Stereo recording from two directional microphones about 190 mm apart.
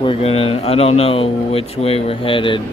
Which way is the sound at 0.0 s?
30° left (ahead or behind).